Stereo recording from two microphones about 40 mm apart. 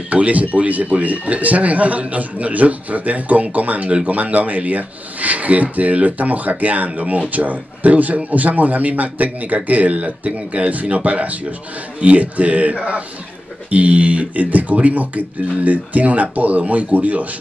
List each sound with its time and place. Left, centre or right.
0.1 s a man's voice: right